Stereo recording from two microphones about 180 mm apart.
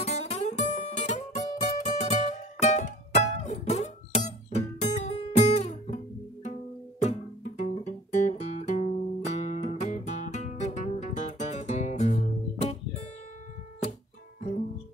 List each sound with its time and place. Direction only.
0.0 s guitar: 35° left (ahead or behind)
1.6 s music: 40° left (ahead or behind)
7.0 s music: 35° left (ahead or behind)